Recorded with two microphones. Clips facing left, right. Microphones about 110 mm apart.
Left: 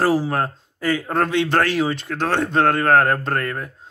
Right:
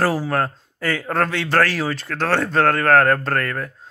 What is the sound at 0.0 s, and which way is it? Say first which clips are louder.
A man's voice: left 1 dB; 25° left (ahead or behind).